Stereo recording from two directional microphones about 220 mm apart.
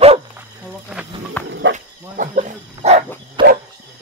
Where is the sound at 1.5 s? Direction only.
55° right (ahead or behind).